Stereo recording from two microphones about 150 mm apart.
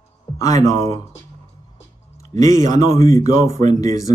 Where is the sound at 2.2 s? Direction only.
20° left (ahead or behind).